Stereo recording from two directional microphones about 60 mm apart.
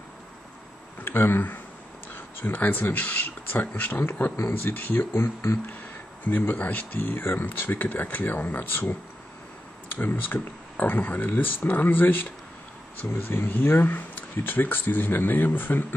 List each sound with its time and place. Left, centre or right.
1.0 s speech: left
9.9 s speech: left